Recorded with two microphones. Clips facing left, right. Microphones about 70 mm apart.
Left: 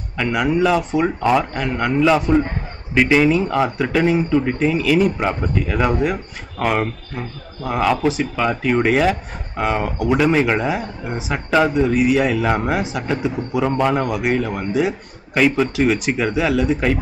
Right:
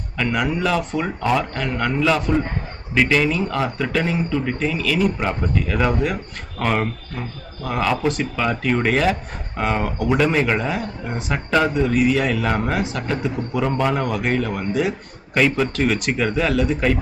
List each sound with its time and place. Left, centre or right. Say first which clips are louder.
0.2 s a man's voice: left 4 dB; centre
5.3 s a man's voice: left 1 dB; centre